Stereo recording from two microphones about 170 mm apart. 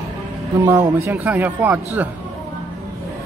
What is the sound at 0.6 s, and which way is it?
Speech, 15° right (ahead or behind).